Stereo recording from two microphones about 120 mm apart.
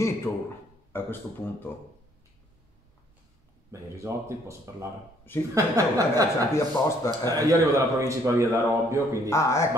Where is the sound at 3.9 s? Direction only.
25° right (ahead or behind).